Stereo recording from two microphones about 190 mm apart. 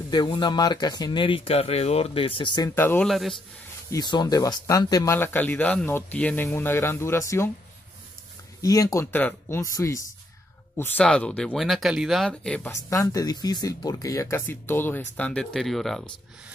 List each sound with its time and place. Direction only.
0.1 s speech: 25° left (ahead or behind)
3.1 s speech: centre (ahead or behind)
3.9 s speech: 20° left (ahead or behind)
8.5 s speech: 20° left (ahead or behind)
10.8 s speech: 5° left (ahead or behind)
12.9 s speech: 15° left (ahead or behind); by 16.1 s centre (ahead or behind)